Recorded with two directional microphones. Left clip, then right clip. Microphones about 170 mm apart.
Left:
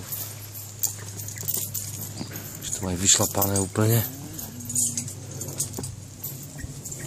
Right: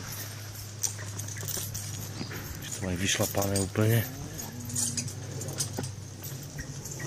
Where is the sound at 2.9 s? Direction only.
25° left (ahead or behind).